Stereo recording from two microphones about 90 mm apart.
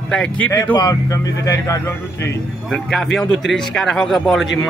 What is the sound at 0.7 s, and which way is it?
Speech, 40° left (ahead or behind).